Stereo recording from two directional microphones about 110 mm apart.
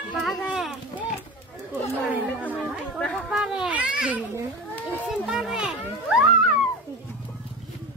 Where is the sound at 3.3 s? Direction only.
5° right (ahead or behind).